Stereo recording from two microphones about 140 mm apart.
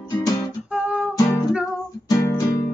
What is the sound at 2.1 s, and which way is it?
Guitar, 25° left (ahead or behind).